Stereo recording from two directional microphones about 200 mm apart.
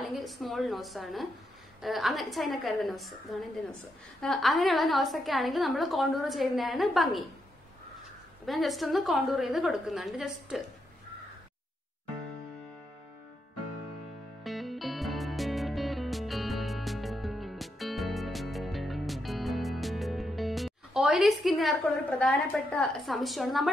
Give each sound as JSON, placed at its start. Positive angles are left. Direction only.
{"t": 0.1, "sound": "a woman's voice", "side_deg": 0}
{"t": 8.5, "sound": "a woman's voice", "side_deg": 0}
{"t": 14.4, "sound": "music", "side_deg": 0}